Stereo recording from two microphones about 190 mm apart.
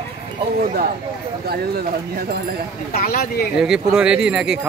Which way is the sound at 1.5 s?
55° right (ahead or behind).